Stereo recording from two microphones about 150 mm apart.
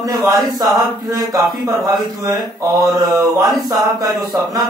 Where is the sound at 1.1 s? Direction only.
25° right (ahead or behind).